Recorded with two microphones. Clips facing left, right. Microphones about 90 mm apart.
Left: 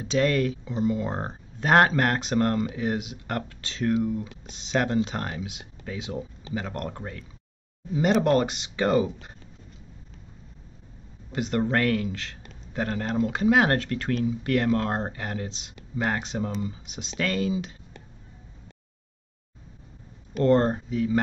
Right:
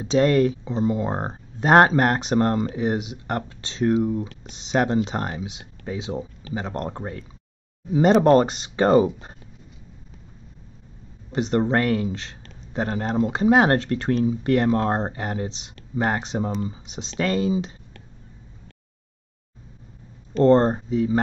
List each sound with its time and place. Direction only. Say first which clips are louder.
0.0 s speech: right 5 dB; 25° right (ahead or behind)
11.3 s speech: right 4 dB; 25° right (ahead or behind)
20.4 s speech: right 4 dB; 30° right (ahead or behind)